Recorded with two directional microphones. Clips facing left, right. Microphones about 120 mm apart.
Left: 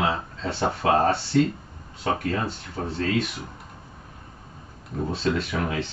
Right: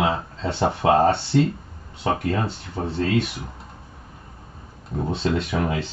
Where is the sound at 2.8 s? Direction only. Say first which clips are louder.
Right 3 dB; 25° right (ahead or behind).